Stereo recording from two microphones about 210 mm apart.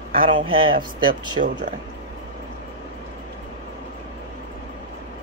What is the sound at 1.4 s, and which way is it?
Speech, 40° right (ahead or behind).